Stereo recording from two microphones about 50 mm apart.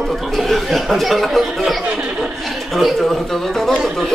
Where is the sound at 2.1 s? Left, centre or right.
Centre.